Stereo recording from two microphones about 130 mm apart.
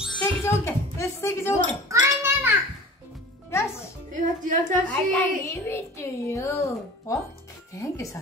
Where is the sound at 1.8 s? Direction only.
25° right (ahead or behind).